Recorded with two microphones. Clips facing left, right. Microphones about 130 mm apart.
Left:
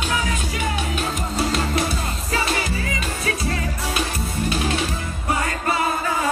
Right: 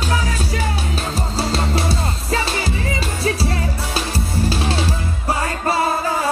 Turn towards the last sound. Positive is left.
turn(degrees=-30)  # may be behind; listen again after turning